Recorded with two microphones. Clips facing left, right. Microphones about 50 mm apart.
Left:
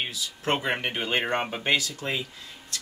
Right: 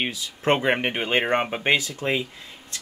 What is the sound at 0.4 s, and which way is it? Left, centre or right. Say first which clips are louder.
Speech: right 6 dB; right.